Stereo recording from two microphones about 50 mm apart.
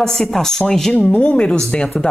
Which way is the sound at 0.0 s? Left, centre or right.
Centre.